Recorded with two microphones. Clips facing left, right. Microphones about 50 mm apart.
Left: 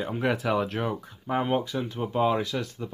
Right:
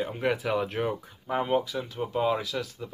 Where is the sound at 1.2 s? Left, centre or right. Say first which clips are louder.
Even; centre.